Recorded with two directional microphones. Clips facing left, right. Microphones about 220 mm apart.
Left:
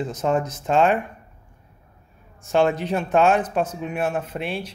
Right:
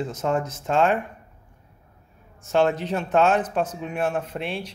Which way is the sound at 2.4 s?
15° left (ahead or behind).